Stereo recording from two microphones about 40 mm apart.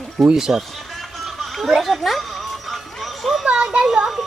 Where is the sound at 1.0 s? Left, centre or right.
Centre.